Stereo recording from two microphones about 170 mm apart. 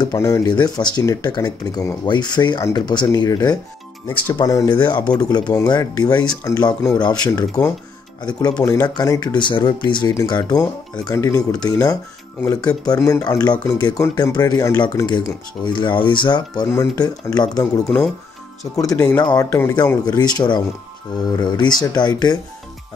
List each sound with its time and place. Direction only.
0.0 s speech: 20° left (ahead or behind)